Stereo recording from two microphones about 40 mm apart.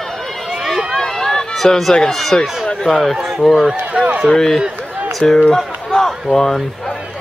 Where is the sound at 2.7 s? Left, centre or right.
Left.